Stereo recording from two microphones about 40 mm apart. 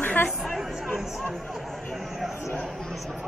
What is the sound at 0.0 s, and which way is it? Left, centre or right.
Chatter, left.